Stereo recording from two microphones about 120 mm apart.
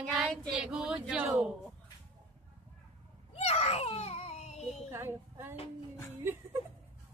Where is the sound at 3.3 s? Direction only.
60° left (ahead or behind).